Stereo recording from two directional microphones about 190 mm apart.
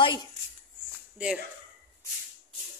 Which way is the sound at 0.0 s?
25° left (ahead or behind).